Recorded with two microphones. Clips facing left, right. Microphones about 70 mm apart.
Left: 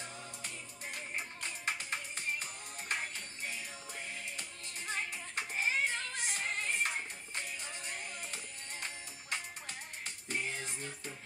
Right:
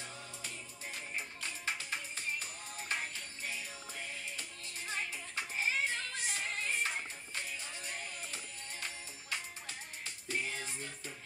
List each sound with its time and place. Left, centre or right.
1.1 s music: left
4.4 s music: left